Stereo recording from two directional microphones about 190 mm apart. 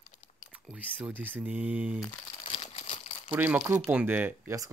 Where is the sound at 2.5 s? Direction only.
35° left (ahead or behind).